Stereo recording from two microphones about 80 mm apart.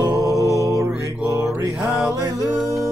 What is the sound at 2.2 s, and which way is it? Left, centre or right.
Music, right.